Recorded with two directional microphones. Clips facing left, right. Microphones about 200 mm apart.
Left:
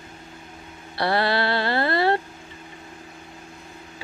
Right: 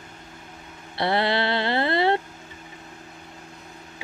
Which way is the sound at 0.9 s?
20° right (ahead or behind).